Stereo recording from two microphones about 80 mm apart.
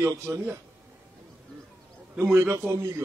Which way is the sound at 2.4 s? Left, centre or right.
Right.